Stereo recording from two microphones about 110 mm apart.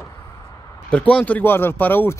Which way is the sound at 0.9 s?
10° left (ahead or behind).